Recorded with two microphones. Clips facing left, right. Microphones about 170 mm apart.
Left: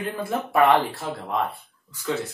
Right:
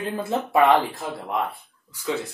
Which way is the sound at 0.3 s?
20° right (ahead or behind).